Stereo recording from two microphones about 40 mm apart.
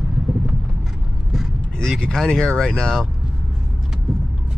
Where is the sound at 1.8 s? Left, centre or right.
Centre.